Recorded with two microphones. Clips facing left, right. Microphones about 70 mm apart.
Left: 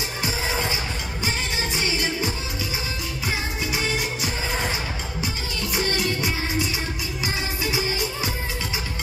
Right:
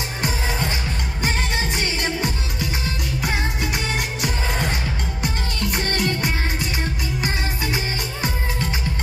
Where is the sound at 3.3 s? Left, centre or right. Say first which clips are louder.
Right 2 dB; right.